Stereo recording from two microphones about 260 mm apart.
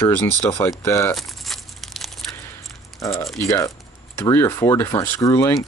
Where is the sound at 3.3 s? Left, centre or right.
Centre.